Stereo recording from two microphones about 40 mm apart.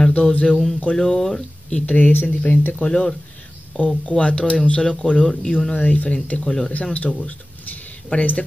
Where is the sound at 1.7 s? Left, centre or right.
Left.